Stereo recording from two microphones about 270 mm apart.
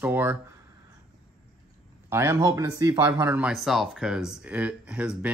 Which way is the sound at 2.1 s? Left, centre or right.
Centre.